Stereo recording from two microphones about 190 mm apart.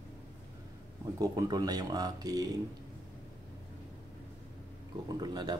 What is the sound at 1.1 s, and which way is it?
Speech, 20° right (ahead or behind).